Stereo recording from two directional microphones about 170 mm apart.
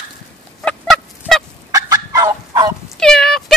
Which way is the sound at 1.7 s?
20° right (ahead or behind).